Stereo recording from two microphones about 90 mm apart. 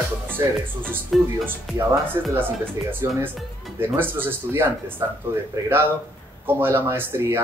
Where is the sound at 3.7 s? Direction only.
25° right (ahead or behind).